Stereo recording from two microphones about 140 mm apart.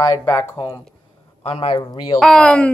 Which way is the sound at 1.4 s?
40° left (ahead or behind).